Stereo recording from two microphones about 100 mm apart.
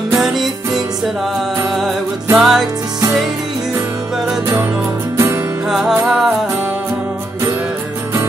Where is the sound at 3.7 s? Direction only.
35° right (ahead or behind).